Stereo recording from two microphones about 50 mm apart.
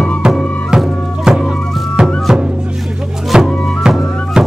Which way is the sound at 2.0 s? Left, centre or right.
Centre.